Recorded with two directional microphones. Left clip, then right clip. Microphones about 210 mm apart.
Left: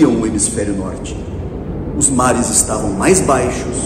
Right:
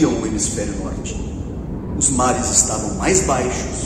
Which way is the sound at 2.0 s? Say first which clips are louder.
Left 4 dB; 45° left (ahead or behind).